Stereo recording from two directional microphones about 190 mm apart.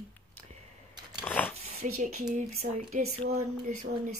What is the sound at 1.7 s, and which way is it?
Speech, 40° right (ahead or behind).